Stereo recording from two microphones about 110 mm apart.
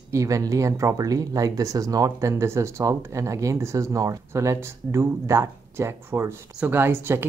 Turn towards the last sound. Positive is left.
turn(degrees=-20)  # may be behind; listen again after turning